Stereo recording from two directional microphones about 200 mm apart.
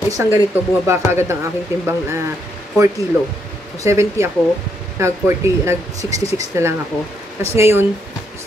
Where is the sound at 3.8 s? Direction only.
15° right (ahead or behind).